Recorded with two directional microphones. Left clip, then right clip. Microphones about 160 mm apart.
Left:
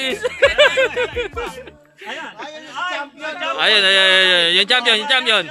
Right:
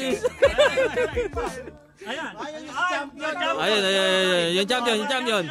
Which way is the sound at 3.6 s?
5° right (ahead or behind).